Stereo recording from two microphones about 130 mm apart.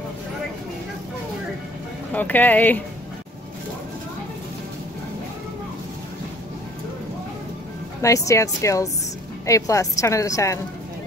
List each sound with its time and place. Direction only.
2.1 s speech: 10° left (ahead or behind)
8.0 s a woman's voice: 25° left (ahead or behind)